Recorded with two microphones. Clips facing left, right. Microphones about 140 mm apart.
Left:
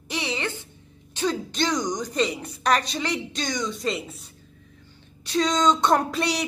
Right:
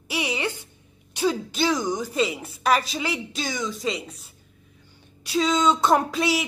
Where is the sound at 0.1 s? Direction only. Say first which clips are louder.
Right 2 dB; 10° right (ahead or behind).